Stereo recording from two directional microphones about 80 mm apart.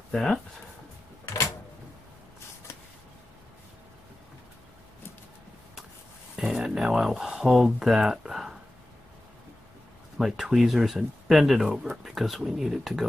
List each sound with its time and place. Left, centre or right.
0.1 s speech: centre
1.2 s a sound: left
6.3 s speech: centre
10.1 s speech: centre